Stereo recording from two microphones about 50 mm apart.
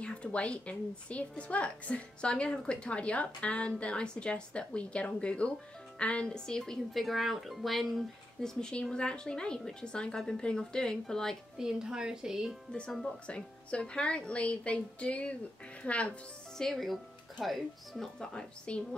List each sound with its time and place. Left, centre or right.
0.0 s a woman's voice: left
11.5 s speech: centre
13.3 s a woman's voice: left
16.5 s speech: centre